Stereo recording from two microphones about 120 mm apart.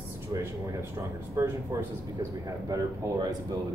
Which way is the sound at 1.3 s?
20° right (ahead or behind).